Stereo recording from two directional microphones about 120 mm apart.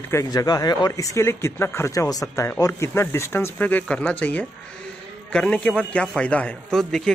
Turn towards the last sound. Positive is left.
turn(degrees=5)  # may be behind; listen again after turning